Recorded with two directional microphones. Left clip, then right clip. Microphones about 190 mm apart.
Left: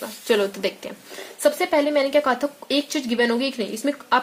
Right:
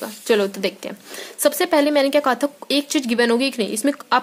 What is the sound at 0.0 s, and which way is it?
Speech, 30° right (ahead or behind).